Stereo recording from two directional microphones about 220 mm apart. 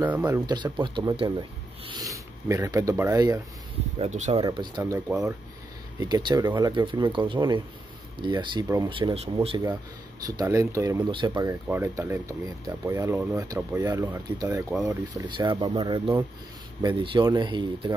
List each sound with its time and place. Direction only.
0.0 s speech: 10° right (ahead or behind)
4.0 s speech: 30° right (ahead or behind)
10.2 s speech: 15° right (ahead or behind)